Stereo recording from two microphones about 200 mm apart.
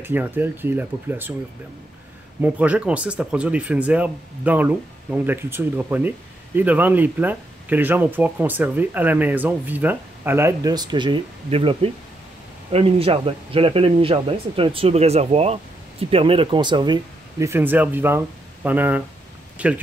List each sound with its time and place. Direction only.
0.0 s speech: 10° right (ahead or behind)
2.4 s speech: 5° right (ahead or behind)